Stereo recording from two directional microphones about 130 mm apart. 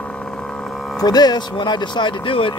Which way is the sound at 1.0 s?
30° left (ahead or behind).